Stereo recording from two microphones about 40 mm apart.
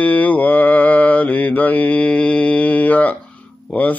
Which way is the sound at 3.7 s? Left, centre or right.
Left.